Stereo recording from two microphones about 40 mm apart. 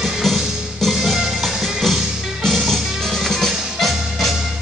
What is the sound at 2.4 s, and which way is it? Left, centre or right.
Music, centre.